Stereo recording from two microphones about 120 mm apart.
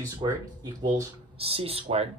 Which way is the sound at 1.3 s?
55° right (ahead or behind).